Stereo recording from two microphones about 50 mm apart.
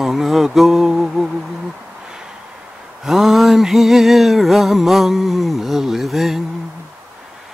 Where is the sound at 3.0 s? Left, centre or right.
Centre.